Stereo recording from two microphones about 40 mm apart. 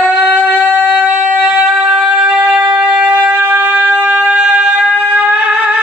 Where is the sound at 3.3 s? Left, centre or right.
Right.